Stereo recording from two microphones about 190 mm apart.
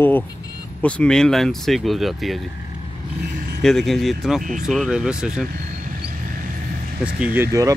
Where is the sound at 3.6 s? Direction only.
Centre (ahead or behind).